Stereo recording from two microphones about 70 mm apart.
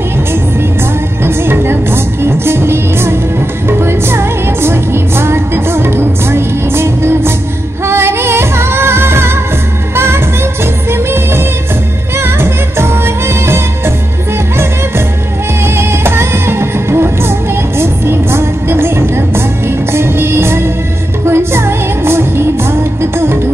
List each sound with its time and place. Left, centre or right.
1.2 s music: right
15.6 s music: right